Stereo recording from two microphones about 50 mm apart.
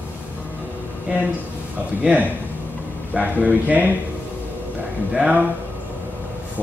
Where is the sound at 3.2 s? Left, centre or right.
Right.